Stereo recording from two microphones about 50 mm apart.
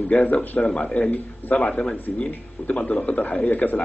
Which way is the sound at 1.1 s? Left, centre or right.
Left.